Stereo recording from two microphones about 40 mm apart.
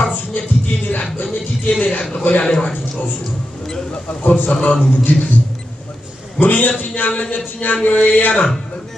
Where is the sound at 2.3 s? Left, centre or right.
Left.